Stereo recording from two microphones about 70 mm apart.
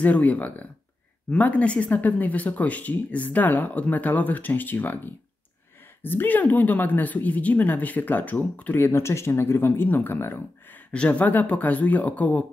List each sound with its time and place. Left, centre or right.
0.0 s speech: left
10.9 s speech: centre